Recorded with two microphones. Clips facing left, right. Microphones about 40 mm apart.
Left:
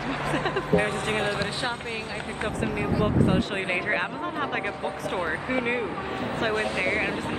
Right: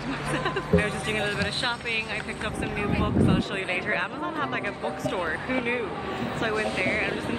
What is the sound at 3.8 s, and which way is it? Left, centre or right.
Speech, centre.